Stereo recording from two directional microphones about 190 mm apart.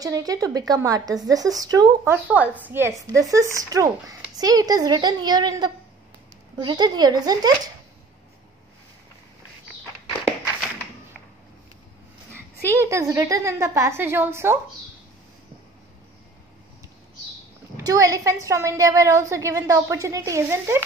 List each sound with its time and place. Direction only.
0.0 s speech: 20° right (ahead or behind)
2.2 s a woman's voice: 10° right (ahead or behind)
12.8 s a woman's voice: 15° right (ahead or behind)
17.7 s a woman's voice: 15° right (ahead or behind)